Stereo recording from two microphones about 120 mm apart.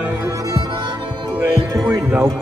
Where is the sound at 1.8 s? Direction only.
15° right (ahead or behind).